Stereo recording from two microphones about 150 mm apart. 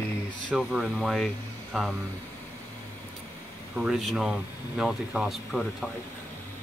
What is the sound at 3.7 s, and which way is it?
Speech, 5° right (ahead or behind).